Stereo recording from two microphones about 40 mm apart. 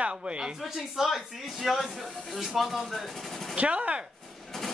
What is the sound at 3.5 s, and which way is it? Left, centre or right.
Speech, right.